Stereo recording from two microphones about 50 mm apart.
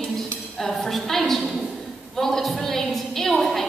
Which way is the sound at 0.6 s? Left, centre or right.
Centre.